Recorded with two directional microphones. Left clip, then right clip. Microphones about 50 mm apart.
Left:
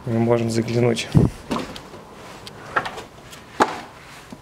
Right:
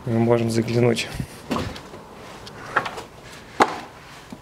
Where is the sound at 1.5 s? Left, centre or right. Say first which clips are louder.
Even; right.